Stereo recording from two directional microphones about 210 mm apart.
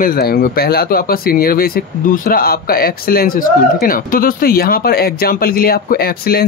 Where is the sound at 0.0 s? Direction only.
45° left (ahead or behind).